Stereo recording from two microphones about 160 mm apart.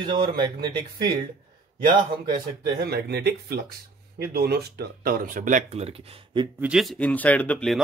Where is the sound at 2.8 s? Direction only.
85° right; by 6.4 s 35° right (ahead or behind).